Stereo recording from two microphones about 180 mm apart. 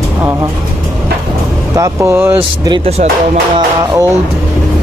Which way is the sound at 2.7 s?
35° right (ahead or behind).